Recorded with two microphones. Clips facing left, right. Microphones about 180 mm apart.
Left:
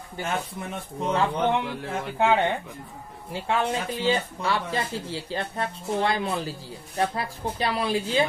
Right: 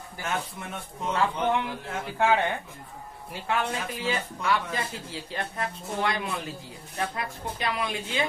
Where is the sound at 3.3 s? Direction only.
25° left (ahead or behind).